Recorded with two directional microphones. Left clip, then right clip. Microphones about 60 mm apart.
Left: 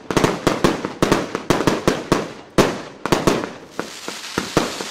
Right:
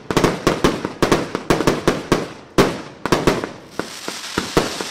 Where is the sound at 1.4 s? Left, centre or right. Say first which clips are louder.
Right 1 dB; centre.